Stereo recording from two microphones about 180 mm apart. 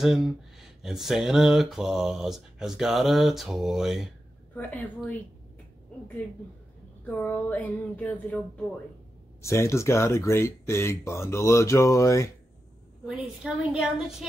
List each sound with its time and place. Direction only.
0.0 s speech: centre (ahead or behind)
4.6 s speech: 10° left (ahead or behind)
7.2 s speech: 10° left (ahead or behind)
9.4 s speech: 15° left (ahead or behind)
13.0 s speech: 5° right (ahead or behind)